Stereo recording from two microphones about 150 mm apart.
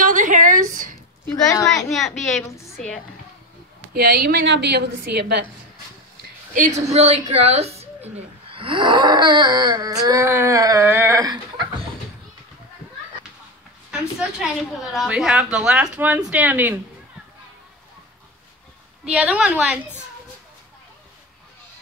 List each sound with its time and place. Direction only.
0.0 s a sound: 60° right (ahead or behind)
1.3 s a woman's voice: 20° left (ahead or behind)
1.9 s a woman's voice: centre (ahead or behind)
3.9 s a woman's voice: 90° right
6.5 s a woman's voice: 55° right (ahead or behind)
8.5 s a sound: 35° right (ahead or behind); by 11.3 s 20° right (ahead or behind)
13.9 s a woman's voice: 5° right (ahead or behind)
19.0 s a woman's voice: 5° right (ahead or behind)